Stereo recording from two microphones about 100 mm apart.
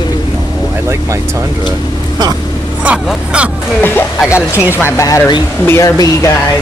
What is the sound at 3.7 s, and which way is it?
Speech, 20° left (ahead or behind).